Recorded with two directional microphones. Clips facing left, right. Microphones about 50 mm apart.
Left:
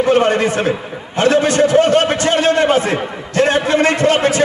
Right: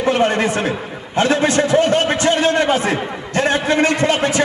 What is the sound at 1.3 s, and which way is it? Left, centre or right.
Speech, right.